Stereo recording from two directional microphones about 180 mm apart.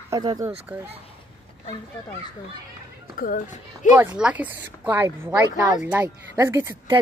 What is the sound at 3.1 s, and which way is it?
Speech, 50° left (ahead or behind).